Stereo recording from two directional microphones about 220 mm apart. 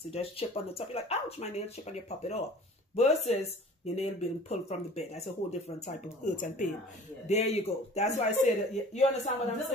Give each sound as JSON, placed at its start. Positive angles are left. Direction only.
{"t": 0.1, "sound": "speech", "side_deg": 25}